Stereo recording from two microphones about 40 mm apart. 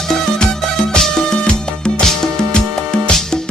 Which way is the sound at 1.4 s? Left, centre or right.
Left.